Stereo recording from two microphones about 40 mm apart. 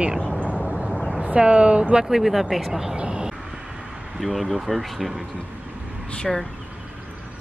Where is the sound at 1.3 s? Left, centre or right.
Right.